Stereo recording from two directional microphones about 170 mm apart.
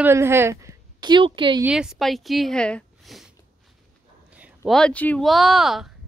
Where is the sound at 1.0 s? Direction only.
30° right (ahead or behind).